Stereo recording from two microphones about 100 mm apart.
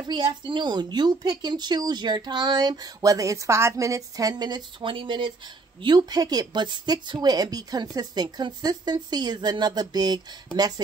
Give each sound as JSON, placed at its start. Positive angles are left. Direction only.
{"t": 0.0, "sound": "speech", "side_deg": -50}